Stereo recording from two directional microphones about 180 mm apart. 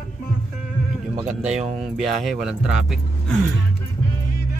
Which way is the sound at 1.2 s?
40° right (ahead or behind).